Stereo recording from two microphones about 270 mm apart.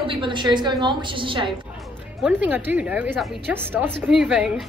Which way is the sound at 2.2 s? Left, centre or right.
Centre.